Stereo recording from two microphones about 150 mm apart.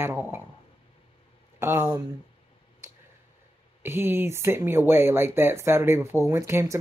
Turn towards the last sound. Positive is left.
turn(degrees=-20)  # may be behind; listen again after turning